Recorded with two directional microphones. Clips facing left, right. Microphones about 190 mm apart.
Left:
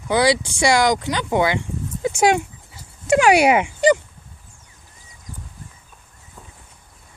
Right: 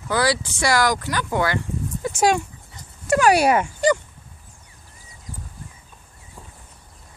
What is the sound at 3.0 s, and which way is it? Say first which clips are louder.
Speech: left 2 dB; 20° left (ahead or behind).